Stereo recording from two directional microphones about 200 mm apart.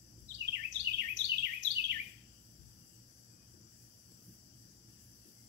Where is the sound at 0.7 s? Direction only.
60° right (ahead or behind).